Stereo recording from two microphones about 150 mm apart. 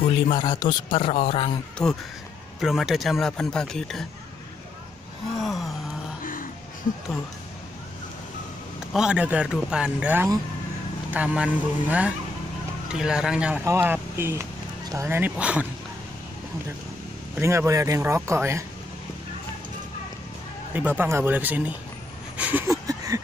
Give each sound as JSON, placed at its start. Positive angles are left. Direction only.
{"t": 0.3, "sound": "speech", "side_deg": 30}
{"t": 1.8, "sound": "speech", "side_deg": 5}
{"t": 5.4, "sound": "gasp", "side_deg": 0}
{"t": 6.2, "sound": "music", "side_deg": 65}
{"t": 8.9, "sound": "a man's voice", "side_deg": -5}
{"t": 17.4, "sound": "speech", "side_deg": -20}
{"t": 21.0, "sound": "a man's voice", "side_deg": -15}
{"t": 22.4, "sound": "a sound", "side_deg": -10}
{"t": 22.8, "sound": "a sound", "side_deg": -20}